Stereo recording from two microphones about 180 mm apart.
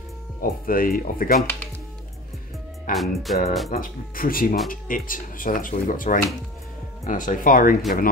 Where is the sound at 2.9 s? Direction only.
Centre (ahead or behind).